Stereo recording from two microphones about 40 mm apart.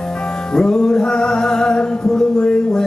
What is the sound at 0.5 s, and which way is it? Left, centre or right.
Music, centre.